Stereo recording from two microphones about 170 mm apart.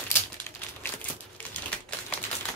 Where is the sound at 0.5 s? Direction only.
15° left (ahead or behind).